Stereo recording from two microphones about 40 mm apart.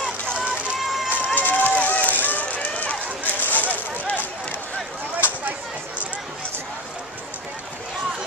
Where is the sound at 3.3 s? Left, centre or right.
Left.